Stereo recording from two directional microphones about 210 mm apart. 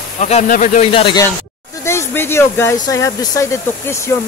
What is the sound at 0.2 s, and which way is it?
Speech, 35° left (ahead or behind).